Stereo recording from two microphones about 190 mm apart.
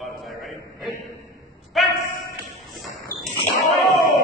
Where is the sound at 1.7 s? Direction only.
Centre (ahead or behind).